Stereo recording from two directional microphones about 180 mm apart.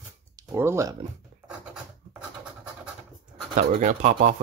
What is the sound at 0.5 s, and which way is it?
Speech, 15° right (ahead or behind).